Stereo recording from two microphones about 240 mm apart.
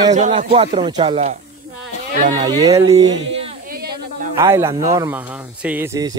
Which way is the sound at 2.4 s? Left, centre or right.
Centre.